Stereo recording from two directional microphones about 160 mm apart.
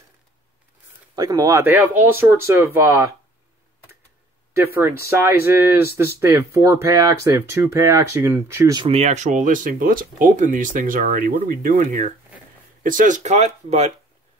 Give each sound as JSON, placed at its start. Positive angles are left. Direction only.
{"t": 1.1, "sound": "speech", "side_deg": -25}
{"t": 5.0, "sound": "speech", "side_deg": -15}
{"t": 8.8, "sound": "speech", "side_deg": -40}